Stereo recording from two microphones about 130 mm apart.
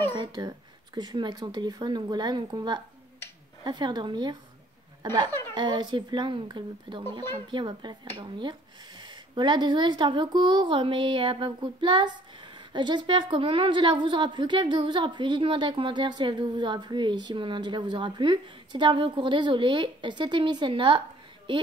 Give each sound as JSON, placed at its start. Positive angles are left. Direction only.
{"t": 0.1, "sound": "speech", "side_deg": -35}